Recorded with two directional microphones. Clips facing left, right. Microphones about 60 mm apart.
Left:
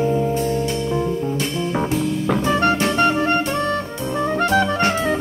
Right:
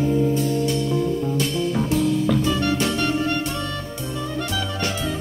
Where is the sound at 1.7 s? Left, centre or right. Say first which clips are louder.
Even; left.